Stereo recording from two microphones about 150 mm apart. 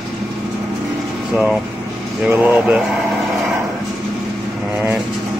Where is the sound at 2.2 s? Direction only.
15° right (ahead or behind).